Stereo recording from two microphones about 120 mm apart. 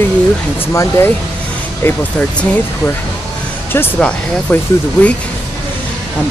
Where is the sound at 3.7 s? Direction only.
15° left (ahead or behind).